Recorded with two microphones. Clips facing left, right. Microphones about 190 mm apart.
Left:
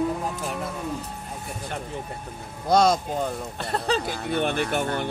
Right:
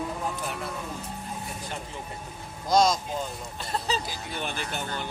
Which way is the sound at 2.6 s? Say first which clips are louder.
Left 3 dB; 65° left (ahead or behind).